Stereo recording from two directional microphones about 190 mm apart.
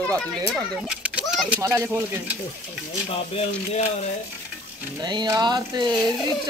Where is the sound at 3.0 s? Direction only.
35° left (ahead or behind).